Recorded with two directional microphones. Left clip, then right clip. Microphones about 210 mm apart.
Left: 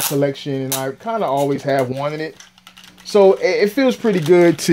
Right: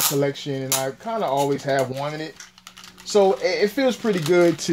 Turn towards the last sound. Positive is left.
turn(degrees=45)  # may be behind; listen again after turning